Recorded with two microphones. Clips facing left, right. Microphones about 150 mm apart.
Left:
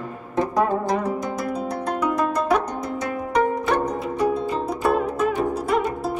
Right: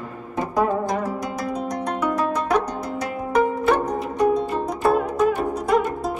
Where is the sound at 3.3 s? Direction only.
5° right (ahead or behind).